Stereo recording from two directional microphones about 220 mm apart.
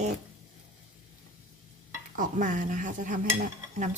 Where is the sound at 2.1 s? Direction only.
35° right (ahead or behind).